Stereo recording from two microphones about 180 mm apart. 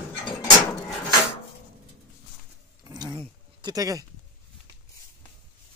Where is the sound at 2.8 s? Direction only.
25° right (ahead or behind).